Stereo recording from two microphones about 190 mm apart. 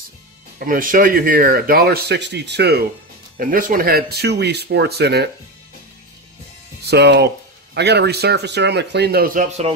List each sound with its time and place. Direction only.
0.6 s speech: 45° right (ahead or behind)
3.3 s speech: 45° right (ahead or behind)
6.8 s speech: 60° right (ahead or behind)